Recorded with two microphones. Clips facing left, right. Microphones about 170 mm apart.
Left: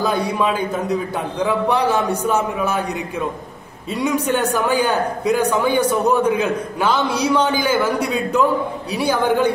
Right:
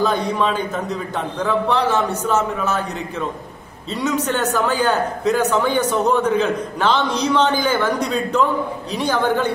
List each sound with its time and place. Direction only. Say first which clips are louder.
0.0 s a man's voice: even; 10° left (ahead or behind)